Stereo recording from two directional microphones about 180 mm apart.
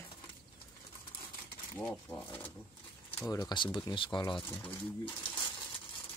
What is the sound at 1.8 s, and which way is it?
Speech, 10° left (ahead or behind).